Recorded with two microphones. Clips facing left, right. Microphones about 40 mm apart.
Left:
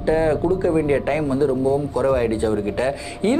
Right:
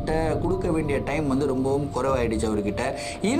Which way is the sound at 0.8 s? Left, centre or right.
Centre.